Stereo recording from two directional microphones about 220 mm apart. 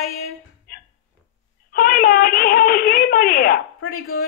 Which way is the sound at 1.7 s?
45° left (ahead or behind).